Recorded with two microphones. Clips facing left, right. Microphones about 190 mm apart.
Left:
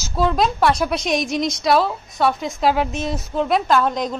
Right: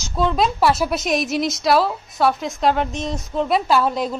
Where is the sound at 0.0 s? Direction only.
5° left (ahead or behind).